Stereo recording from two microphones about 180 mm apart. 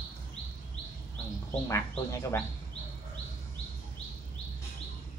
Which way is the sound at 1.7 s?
15° left (ahead or behind).